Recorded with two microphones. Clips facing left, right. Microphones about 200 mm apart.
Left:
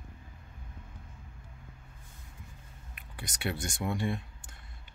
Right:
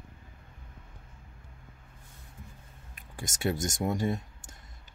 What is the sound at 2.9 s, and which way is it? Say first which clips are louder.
Speech: right 4 dB; 45° right (ahead or behind).